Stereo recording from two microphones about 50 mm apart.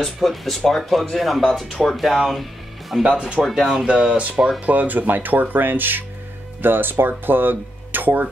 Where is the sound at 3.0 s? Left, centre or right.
Centre.